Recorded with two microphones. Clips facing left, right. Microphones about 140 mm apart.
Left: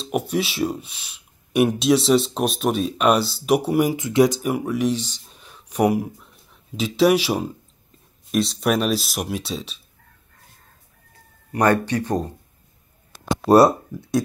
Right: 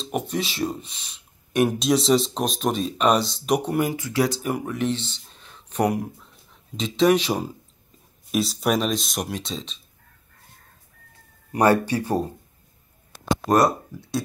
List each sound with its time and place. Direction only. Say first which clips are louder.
0.0 s speech: left 3 dB; 5° left (ahead or behind)
3.9 s speech: left 6 dB; 20° left (ahead or behind)
11.5 s speech: even; 10° right (ahead or behind)
13.5 s speech: left 6 dB; 30° left (ahead or behind)